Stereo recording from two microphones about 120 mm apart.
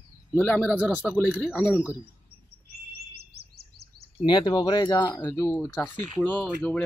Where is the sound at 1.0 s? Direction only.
5° left (ahead or behind).